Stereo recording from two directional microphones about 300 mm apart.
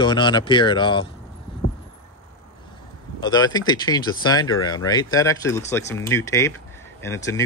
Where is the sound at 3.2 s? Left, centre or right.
Centre.